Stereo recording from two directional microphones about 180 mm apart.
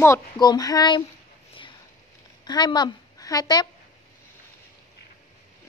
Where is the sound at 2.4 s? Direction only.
25° left (ahead or behind).